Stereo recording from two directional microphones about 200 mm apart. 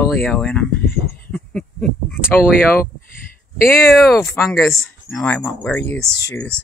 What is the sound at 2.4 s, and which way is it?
Speech, 45° left (ahead or behind).